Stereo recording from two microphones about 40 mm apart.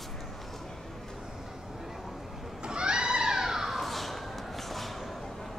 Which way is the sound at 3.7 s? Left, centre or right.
Centre.